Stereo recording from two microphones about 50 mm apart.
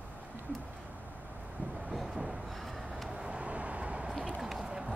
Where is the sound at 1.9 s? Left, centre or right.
Centre.